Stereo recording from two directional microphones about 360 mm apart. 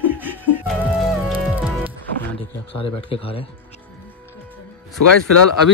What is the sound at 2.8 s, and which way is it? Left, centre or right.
Speech, centre.